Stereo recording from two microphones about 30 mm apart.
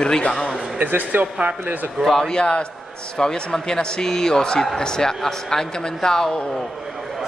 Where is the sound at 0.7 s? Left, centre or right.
Right.